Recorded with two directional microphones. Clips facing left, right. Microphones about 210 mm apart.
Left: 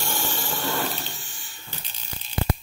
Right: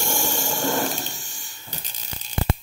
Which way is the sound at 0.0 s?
45° right (ahead or behind).